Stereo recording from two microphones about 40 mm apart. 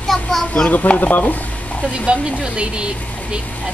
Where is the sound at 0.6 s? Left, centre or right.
Left.